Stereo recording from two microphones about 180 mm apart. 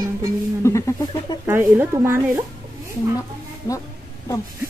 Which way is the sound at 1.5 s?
15° right (ahead or behind).